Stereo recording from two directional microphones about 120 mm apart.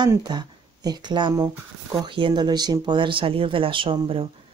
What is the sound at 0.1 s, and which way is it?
Speech, 35° right (ahead or behind).